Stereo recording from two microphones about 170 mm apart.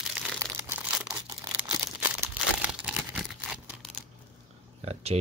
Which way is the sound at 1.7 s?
15° right (ahead or behind).